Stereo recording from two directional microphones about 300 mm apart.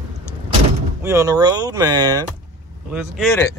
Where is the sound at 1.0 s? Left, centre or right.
Centre.